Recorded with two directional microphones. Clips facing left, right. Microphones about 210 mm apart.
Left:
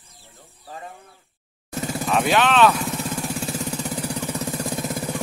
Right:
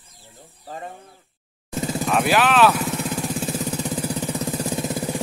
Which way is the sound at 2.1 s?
Centre (ahead or behind).